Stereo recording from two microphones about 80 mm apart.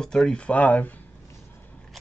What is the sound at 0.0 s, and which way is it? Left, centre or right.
Speech, centre.